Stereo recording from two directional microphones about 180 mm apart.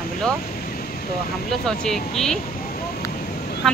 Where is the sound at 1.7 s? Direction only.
5° left (ahead or behind).